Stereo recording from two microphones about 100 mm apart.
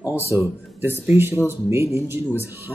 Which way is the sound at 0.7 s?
25° right (ahead or behind).